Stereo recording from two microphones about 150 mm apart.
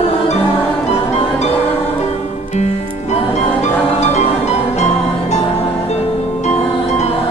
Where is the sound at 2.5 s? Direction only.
45° left (ahead or behind).